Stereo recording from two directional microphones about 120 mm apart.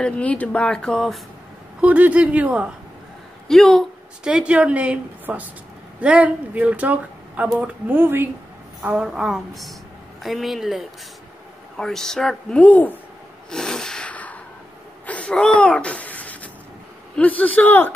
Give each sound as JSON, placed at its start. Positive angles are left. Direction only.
{"t": 0.0, "sound": "speech", "side_deg": 10}
{"t": 1.8, "sound": "a woman's voice", "side_deg": -10}
{"t": 3.4, "sound": "speech", "side_deg": 5}
{"t": 4.2, "sound": "a woman's voice", "side_deg": -5}
{"t": 8.8, "sound": "speech", "side_deg": -5}
{"t": 13.5, "sound": "snort", "side_deg": 5}
{"t": 15.0, "sound": "speech", "side_deg": 10}